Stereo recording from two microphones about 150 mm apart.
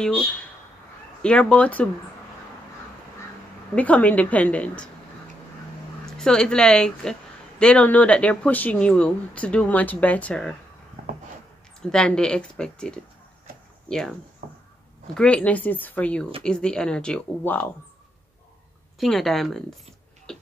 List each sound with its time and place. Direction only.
1.2 s a woman's voice: 5° left (ahead or behind)
3.7 s a woman's voice: 10° left (ahead or behind)
6.0 s a woman's voice: 5° left (ahead or behind)
11.8 s speech: 5° left (ahead or behind)
14.4 s a sound: 65° right (ahead or behind)
15.1 s a woman's voice: 10° left (ahead or behind)
18.9 s speech: centre (ahead or behind)
20.3 s music: 5° left (ahead or behind)